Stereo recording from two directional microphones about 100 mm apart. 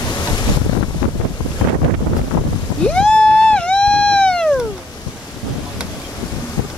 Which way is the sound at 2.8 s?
10° left (ahead or behind).